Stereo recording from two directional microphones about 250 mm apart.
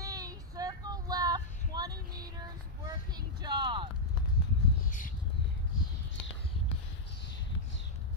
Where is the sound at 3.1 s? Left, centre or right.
Centre.